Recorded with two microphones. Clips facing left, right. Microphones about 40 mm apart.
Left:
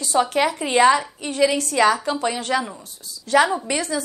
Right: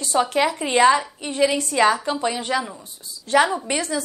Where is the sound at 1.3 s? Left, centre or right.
Right.